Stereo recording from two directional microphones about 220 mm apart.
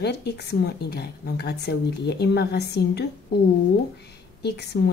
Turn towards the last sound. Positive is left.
turn(degrees=50)  # may be behind; listen again after turning